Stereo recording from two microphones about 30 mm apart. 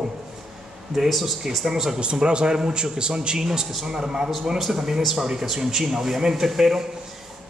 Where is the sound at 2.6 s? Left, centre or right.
Right.